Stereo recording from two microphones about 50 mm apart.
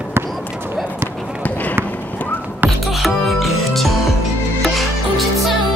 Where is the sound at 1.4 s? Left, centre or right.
Left.